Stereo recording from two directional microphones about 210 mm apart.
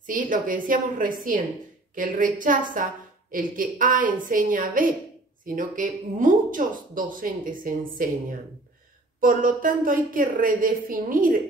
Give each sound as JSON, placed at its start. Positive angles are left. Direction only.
{"t": 0.0, "sound": "a woman's voice", "side_deg": -40}